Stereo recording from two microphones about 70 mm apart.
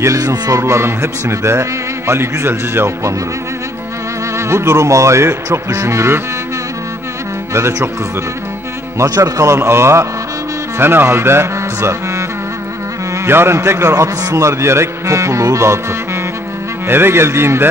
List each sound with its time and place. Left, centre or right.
0.0 s a man's voice: right
4.4 s a man's voice: right
7.5 s a man's voice: right
9.1 s a man's voice: right
16.8 s a man's voice: right